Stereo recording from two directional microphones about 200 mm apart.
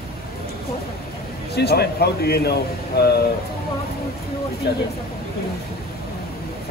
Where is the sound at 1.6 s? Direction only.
55° left (ahead or behind).